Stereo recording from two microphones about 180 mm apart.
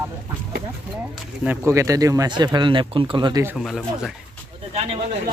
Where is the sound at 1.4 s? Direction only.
10° right (ahead or behind).